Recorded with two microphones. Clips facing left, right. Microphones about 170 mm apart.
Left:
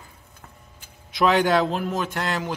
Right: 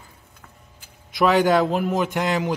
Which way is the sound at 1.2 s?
Centre (ahead or behind).